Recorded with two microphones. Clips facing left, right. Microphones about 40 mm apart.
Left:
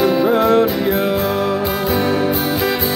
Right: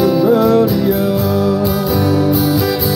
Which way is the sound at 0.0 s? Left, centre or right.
Left.